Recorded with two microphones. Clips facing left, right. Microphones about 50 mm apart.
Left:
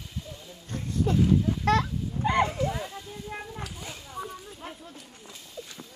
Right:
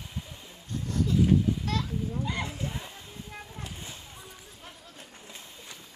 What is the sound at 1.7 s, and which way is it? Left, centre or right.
Speech, left.